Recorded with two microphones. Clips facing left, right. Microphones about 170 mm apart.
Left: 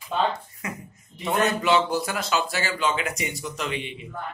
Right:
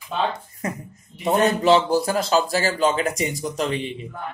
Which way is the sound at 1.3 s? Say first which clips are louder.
Right 5 dB; 35° right (ahead or behind).